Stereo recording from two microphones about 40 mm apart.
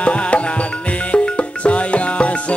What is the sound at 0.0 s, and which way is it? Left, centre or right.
Music, left.